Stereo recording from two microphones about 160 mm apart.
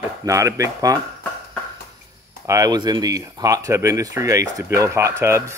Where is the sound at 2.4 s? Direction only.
20° right (ahead or behind).